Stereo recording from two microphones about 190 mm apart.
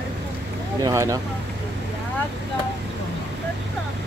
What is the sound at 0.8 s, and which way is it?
Speech, 15° right (ahead or behind).